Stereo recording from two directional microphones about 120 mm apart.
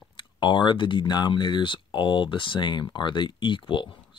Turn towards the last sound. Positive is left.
turn(degrees=40)  # may be behind; listen again after turning